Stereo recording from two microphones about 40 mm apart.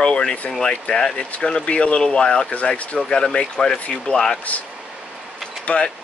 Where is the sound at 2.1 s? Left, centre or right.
Left.